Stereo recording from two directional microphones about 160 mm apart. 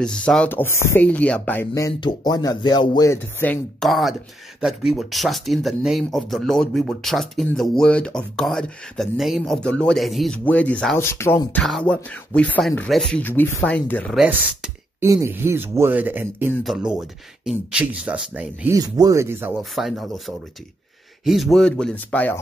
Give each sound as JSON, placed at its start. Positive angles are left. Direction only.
{"t": 0.0, "sound": "speech", "side_deg": 5}
{"t": 1.7, "sound": "speech", "side_deg": 20}
{"t": 3.1, "sound": "speech", "side_deg": 15}
{"t": 3.8, "sound": "speech", "side_deg": 0}
{"t": 11.6, "sound": "speech", "side_deg": 5}
{"t": 14.1, "sound": "speech", "side_deg": -5}
{"t": 15.0, "sound": "speech", "side_deg": -15}
{"t": 16.6, "sound": "speech", "side_deg": -5}
{"t": 18.8, "sound": "speech", "side_deg": -20}
{"t": 19.7, "sound": "speech", "side_deg": 0}